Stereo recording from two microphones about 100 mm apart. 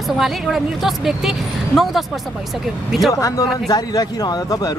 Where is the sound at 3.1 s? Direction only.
35° left (ahead or behind).